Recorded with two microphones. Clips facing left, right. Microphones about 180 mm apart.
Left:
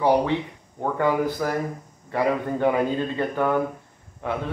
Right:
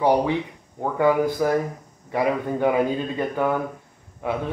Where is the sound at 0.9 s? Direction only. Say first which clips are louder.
Right 4 dB; 10° right (ahead or behind).